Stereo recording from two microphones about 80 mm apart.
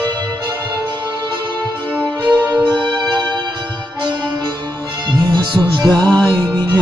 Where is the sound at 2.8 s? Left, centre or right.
Right.